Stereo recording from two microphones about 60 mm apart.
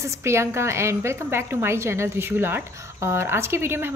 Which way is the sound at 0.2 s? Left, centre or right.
Right.